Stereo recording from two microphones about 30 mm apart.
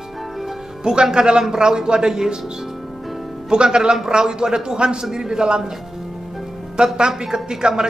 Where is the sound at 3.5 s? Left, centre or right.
Right.